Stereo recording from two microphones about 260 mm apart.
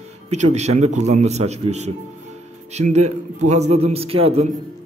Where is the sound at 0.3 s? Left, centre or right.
Right.